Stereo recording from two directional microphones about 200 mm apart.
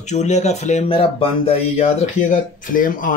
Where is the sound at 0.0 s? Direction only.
35° left (ahead or behind).